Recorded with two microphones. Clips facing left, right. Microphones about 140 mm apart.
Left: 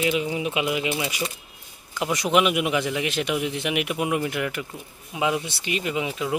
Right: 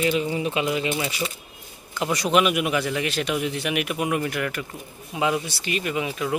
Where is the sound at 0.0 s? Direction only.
10° left (ahead or behind).